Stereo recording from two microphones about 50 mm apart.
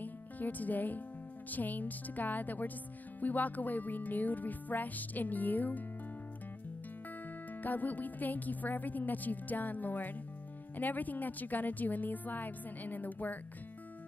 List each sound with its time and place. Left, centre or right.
0.0 s music: left
7.6 s music: left